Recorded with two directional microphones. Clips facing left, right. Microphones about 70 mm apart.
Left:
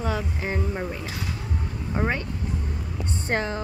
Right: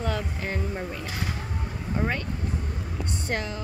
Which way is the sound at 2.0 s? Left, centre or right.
Left.